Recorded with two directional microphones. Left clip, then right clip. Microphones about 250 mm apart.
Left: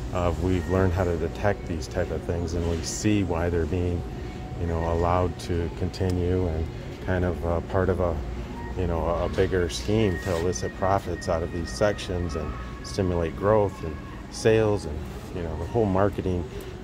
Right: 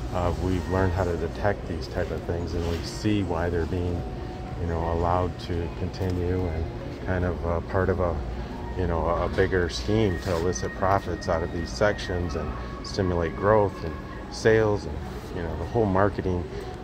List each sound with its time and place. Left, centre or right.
0.1 s speech: centre
4.8 s speech: centre
7.1 s speech: centre